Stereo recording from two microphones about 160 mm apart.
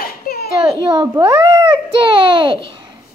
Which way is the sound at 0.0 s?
70° left (ahead or behind).